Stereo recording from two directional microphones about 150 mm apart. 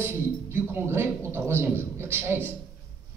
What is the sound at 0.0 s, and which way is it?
A man's voice, 15° right (ahead or behind).